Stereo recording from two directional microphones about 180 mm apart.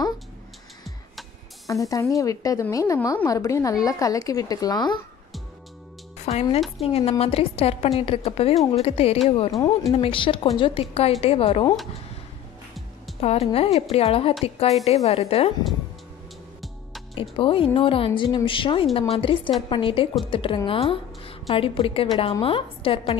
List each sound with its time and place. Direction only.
1.7 s a woman's voice: 20° left (ahead or behind)
6.3 s a woman's voice: 35° left (ahead or behind)
13.2 s a woman's voice: 35° left (ahead or behind)
17.1 s a woman's voice: 30° left (ahead or behind)